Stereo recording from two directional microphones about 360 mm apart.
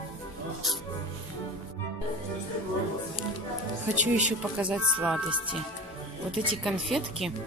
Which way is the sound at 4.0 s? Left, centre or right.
Centre.